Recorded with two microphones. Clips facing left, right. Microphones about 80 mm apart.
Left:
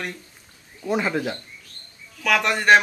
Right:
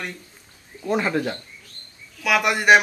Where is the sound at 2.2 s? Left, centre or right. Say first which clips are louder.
Right 1 dB; centre.